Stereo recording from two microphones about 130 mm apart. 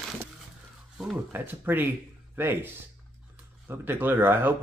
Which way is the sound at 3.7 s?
15° right (ahead or behind).